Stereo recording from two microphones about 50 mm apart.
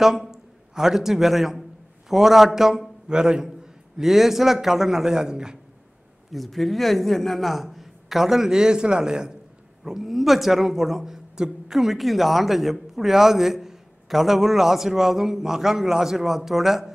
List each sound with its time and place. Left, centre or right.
0.0 s a man's voice: centre
4.0 s a man's voice: centre
6.3 s speech: centre
11.8 s a man's voice: centre